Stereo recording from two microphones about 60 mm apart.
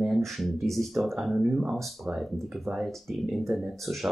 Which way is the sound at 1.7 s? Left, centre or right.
Centre.